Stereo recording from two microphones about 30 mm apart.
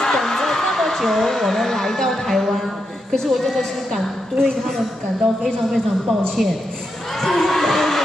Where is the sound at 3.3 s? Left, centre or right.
Centre.